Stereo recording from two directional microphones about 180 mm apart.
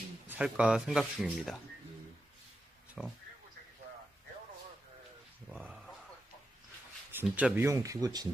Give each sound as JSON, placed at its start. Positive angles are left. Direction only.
{"t": 0.3, "sound": "speech", "side_deg": -5}
{"t": 3.0, "sound": "speech", "side_deg": -5}
{"t": 5.5, "sound": "a sound", "side_deg": -5}
{"t": 7.1, "sound": "speech", "side_deg": -10}